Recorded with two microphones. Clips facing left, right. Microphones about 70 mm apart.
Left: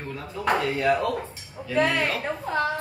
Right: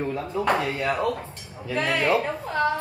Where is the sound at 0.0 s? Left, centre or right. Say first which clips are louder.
Right 7 dB; centre.